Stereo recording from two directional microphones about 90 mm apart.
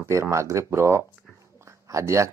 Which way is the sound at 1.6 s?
35° right (ahead or behind).